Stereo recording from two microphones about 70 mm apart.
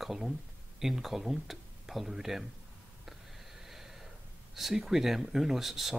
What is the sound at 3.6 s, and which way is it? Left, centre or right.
Snort, centre.